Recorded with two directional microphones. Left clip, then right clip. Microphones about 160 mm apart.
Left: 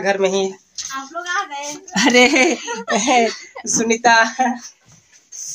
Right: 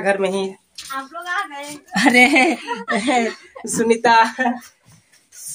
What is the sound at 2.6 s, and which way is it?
Speech, 20° left (ahead or behind).